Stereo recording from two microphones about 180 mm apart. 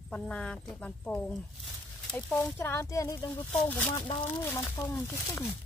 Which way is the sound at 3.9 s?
35° left (ahead or behind).